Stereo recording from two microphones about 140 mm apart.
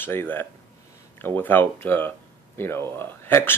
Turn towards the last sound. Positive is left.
turn(degrees=15)  # may be behind; listen again after turning